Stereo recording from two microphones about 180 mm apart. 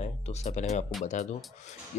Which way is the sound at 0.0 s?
35° left (ahead or behind).